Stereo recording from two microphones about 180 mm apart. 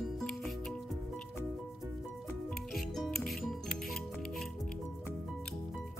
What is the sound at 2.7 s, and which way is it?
Music, centre (ahead or behind).